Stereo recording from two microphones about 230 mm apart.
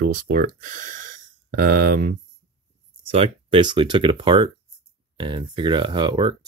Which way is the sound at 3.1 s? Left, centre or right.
Right.